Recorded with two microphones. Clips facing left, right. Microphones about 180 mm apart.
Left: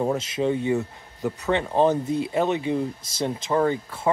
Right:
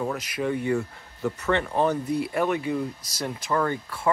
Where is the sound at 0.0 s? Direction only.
25° left (ahead or behind).